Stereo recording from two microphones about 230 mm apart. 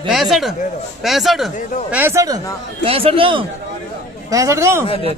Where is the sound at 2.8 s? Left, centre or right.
Right.